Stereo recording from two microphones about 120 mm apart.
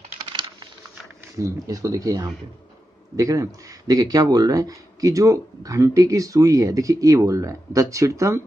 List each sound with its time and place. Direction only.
0.2 s typing: 40° right (ahead or behind)
1.4 s speech: 30° right (ahead or behind)